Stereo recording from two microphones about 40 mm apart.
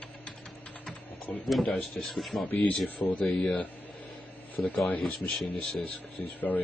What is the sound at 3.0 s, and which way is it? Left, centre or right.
Speech, left.